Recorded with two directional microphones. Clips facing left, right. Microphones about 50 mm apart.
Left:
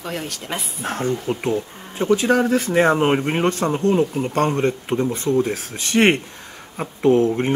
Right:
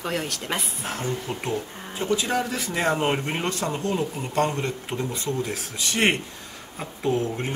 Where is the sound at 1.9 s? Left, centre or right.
Left.